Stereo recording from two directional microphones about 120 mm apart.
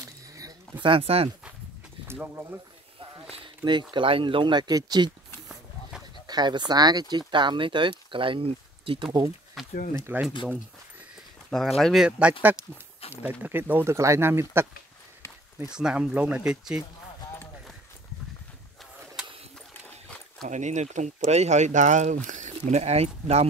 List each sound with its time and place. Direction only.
0.0 s a sound: 30° right (ahead or behind)
0.8 s speech: 50° right (ahead or behind)
2.0 s speech: 15° right (ahead or behind)
3.0 s a sound: 50° right (ahead or behind)
3.9 s speech: 45° right (ahead or behind)
6.2 s speech: 35° right (ahead or behind)
9.6 s a sound: centre (ahead or behind)
10.1 s speech: 15° right (ahead or behind)
11.5 s speech: 5° left (ahead or behind); by 14.7 s 20° right (ahead or behind)
15.7 s speech: 5° right (ahead or behind)
20.4 s speech: 80° right; by 23.4 s 60° right (ahead or behind)